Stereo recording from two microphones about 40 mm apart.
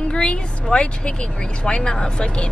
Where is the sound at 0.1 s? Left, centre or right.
Left.